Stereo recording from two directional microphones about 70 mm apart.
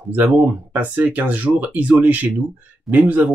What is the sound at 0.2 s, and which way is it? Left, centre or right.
Speech, right.